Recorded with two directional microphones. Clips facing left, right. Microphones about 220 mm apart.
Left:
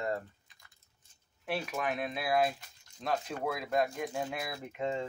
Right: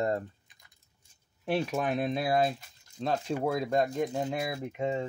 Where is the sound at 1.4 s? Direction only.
30° right (ahead or behind).